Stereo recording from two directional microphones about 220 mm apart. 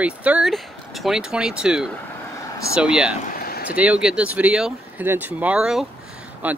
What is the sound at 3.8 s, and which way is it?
Speech, 5° right (ahead or behind).